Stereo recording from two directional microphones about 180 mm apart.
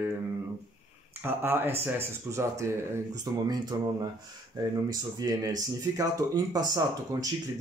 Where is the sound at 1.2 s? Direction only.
10° right (ahead or behind).